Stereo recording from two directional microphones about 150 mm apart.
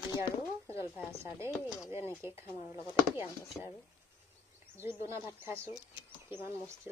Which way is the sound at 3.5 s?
10° left (ahead or behind).